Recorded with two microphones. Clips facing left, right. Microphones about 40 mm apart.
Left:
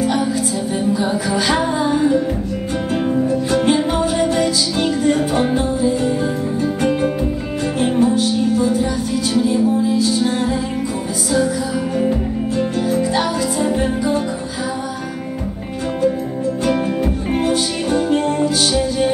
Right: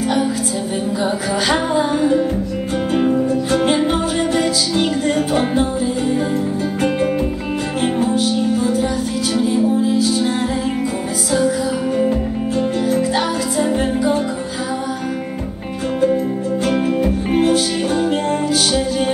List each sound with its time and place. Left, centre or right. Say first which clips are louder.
3.5 s music: even; centre
4.7 s music: left 1 dB; centre
5.5 s music: even; centre
7.8 s music: left 3 dB; centre
10.1 s music: even; centre
12.5 s music: right 1 dB; centre
13.7 s music: right 1 dB; centre
17.3 s music: right 3 dB; centre